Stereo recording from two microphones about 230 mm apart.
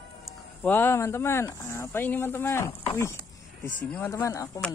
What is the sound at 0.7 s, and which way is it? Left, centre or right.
Speech, centre.